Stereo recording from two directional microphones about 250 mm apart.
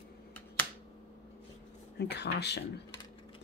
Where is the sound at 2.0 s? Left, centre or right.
Left.